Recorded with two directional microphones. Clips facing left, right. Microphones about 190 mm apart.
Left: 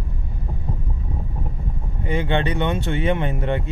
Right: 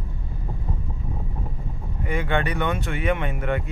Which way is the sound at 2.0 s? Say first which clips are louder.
Left 3 dB; 25° left (ahead or behind).